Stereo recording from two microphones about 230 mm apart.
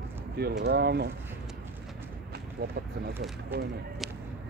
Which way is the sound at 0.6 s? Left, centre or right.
Right.